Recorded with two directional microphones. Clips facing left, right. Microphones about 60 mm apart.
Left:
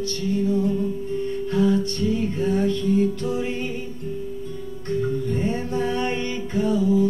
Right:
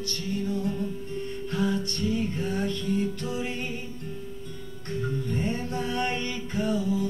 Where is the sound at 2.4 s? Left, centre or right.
Centre.